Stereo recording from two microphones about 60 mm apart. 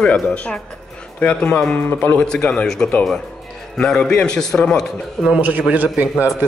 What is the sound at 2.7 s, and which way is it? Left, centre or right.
A woman's voice, centre.